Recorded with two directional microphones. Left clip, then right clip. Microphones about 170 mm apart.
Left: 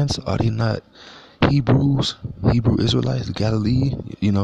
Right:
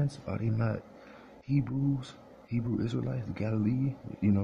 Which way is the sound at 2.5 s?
40° left (ahead or behind).